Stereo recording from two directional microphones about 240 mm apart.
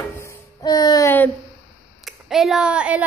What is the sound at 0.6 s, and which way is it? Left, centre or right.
Speech, centre.